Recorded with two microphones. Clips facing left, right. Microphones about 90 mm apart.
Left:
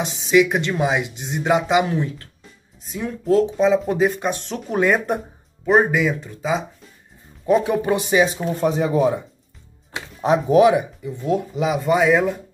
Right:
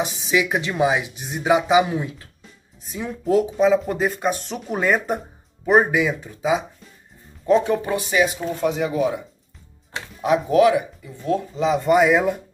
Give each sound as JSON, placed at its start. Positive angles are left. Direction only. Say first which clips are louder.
{"t": 0.2, "sound": "speech", "louder": "left 7 dB", "side_deg": -5}
{"t": 7.4, "sound": "speech", "louder": "left 1 dB", "side_deg": 10}
{"t": 10.2, "sound": "speech", "louder": "left 2 dB", "side_deg": 25}